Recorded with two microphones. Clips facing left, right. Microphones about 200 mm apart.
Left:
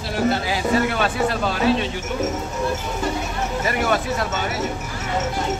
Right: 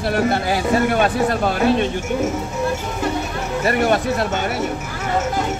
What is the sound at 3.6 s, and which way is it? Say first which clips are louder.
Speech: right 5 dB; 50° right (ahead or behind).